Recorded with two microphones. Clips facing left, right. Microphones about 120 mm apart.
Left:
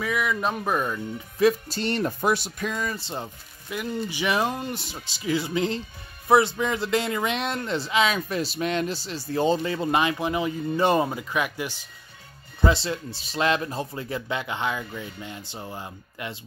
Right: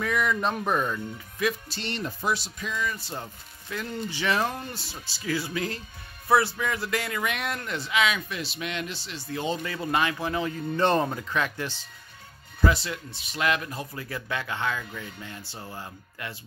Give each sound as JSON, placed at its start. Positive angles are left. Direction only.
{"t": 0.0, "sound": "speech", "side_deg": 5}
{"t": 1.4, "sound": "speech", "side_deg": 45}
{"t": 2.9, "sound": "speech", "side_deg": 25}
{"t": 3.7, "sound": "speech", "side_deg": 15}
{"t": 12.6, "sound": "speech", "side_deg": 30}